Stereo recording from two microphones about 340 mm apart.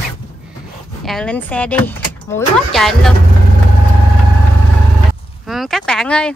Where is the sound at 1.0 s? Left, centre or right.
Centre.